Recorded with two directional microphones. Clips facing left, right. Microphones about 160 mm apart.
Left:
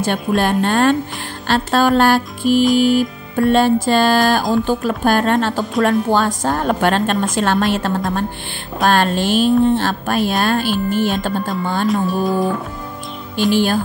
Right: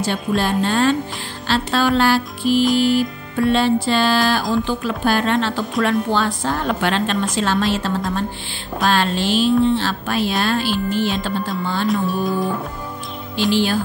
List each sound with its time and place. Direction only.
0.0 s music: 55° left (ahead or behind)
11.9 s music: centre (ahead or behind)
13.5 s music: 50° left (ahead or behind)